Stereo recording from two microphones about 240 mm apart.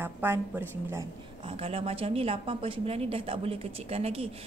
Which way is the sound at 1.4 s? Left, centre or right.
Right.